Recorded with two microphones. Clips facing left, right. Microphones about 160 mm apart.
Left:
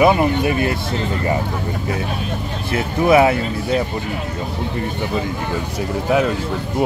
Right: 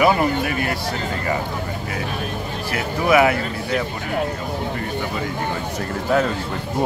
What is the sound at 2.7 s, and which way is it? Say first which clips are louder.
Speech: left 4 dB; 25° left (ahead or behind).